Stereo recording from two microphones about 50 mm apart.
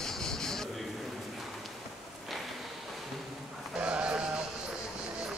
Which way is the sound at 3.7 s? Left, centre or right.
Right.